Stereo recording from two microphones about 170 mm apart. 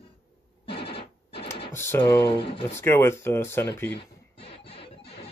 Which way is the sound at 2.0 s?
30° left (ahead or behind).